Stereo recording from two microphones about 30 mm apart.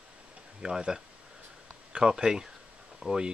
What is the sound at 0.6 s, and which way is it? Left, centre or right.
Speech, right.